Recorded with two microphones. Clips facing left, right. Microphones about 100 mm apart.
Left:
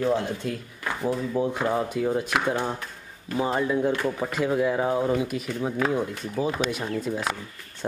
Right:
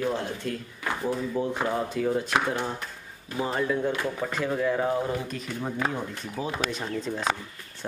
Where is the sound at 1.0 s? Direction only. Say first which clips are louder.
Left 3 dB; 15° left (ahead or behind).